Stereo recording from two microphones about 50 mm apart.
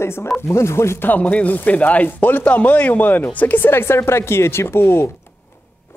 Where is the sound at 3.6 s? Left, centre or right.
Left.